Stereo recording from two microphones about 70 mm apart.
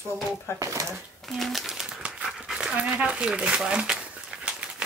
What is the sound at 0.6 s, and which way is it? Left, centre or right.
Speech, right.